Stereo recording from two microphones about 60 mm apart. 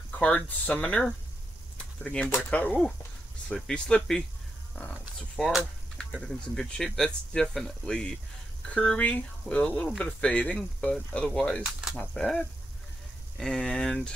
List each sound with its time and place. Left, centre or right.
0.2 s speech: left
2.5 s speech: left
3.4 s speech: centre
11.3 s speech: centre
11.6 s speech: centre
12.1 s speech: centre
13.4 s speech: centre